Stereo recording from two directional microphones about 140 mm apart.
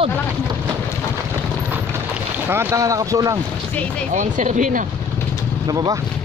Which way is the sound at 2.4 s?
20° right (ahead or behind).